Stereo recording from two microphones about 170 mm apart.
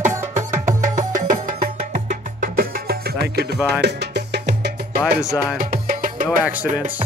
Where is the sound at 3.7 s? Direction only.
75° right (ahead or behind).